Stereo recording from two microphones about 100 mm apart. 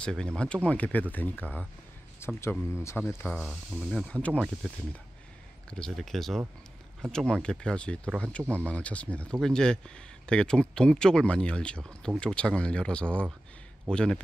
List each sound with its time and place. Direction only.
0.0 s speech: 10° left (ahead or behind)
3.9 s speech: 10° left (ahead or behind)